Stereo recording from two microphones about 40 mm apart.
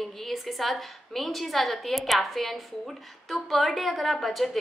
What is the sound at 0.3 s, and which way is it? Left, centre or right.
A woman's voice, centre.